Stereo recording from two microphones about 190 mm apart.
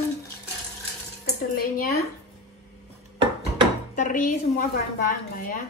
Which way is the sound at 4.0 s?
45° left (ahead or behind).